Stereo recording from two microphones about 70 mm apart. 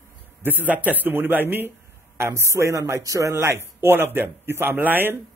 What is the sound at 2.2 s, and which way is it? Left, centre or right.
Speech, right.